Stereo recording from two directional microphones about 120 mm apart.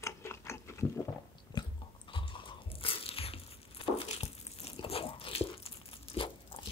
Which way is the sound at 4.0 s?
55° left (ahead or behind).